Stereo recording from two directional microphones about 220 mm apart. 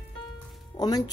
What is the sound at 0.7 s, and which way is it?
Speech, 15° left (ahead or behind).